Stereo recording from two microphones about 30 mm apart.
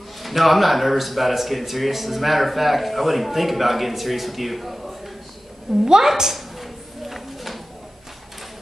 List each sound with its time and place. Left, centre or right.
0.2 s speech: centre
5.9 s a woman's voice: centre
6.3 s a sound: centre